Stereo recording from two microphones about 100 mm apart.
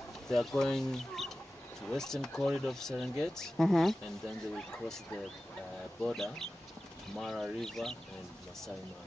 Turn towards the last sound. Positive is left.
turn(degrees=5)  # may be behind; listen again after turning